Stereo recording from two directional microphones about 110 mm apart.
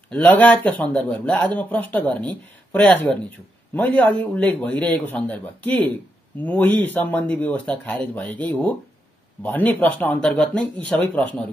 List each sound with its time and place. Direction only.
0.1 s speech: 15° left (ahead or behind)